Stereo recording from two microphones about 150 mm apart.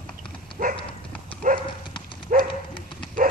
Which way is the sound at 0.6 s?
65° right (ahead or behind).